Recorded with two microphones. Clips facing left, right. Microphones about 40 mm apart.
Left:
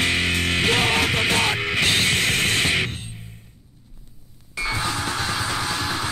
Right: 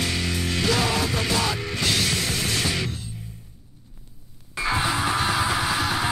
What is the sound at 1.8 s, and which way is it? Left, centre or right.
Music, left.